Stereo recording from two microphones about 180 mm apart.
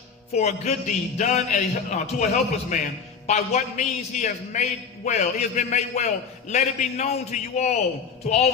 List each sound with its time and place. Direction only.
0.3 s a man's voice: 40° left (ahead or behind)